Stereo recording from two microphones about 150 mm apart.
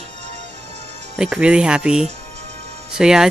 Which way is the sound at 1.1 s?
5° right (ahead or behind).